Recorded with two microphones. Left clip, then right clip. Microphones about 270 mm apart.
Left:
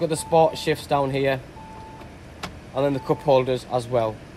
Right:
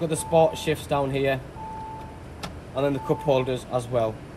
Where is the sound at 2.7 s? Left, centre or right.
Left.